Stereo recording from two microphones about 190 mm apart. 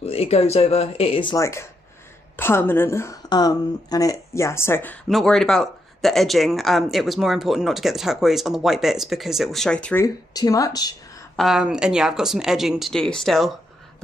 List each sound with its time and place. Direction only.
0.0 s speech: 30° left (ahead or behind)
1.4 s speech: 15° left (ahead or behind)
5.0 s speech: centre (ahead or behind)
10.0 s speech: 20° left (ahead or behind)
11.3 s speech: centre (ahead or behind)